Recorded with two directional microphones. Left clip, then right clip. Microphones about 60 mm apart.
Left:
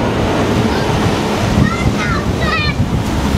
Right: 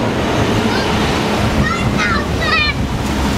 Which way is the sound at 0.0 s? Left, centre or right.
Centre.